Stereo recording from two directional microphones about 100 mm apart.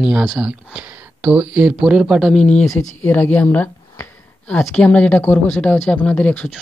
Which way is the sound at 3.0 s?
20° left (ahead or behind).